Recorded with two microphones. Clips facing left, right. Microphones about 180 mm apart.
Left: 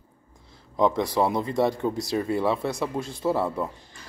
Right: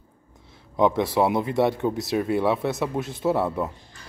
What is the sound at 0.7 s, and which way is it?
Speech, 5° right (ahead or behind).